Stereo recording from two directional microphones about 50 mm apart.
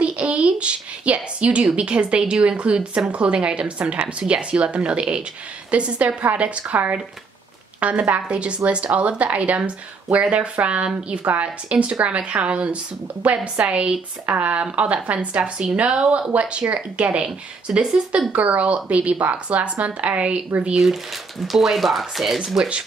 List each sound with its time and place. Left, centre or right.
0.0 s a sound: right
1.8 s a woman's voice: right
20.7 s speech: centre